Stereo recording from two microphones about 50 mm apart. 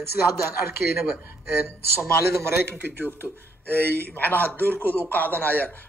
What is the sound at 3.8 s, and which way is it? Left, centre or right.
Speech, left.